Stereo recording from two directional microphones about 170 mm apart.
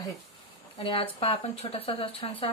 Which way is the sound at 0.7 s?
30° left (ahead or behind).